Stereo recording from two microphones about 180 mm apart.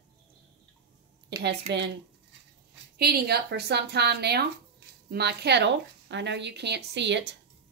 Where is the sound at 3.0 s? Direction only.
60° right (ahead or behind).